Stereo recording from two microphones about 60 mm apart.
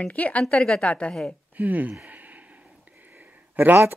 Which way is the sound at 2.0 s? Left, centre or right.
Right.